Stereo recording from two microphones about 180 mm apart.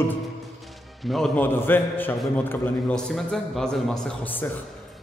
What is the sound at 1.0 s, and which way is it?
A man's voice, centre (ahead or behind).